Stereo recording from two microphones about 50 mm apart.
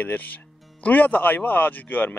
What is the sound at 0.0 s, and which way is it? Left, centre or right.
Speech, left.